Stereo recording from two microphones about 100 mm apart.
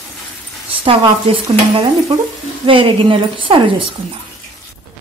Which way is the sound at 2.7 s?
60° right (ahead or behind).